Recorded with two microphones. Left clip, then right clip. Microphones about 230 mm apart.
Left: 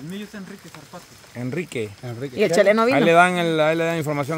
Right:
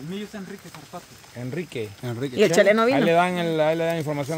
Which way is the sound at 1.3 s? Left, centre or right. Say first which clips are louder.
Left 3 dB; left.